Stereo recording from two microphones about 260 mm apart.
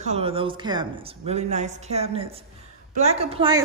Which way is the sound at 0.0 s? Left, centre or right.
Right.